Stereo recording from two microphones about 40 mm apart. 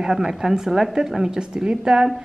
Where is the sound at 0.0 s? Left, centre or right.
Centre.